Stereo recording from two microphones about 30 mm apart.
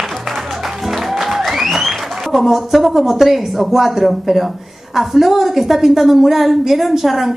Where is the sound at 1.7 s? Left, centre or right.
Centre.